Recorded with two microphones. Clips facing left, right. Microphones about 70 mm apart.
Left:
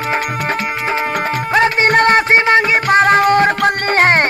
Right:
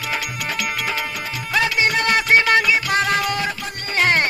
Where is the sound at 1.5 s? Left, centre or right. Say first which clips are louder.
Left 6 dB; left.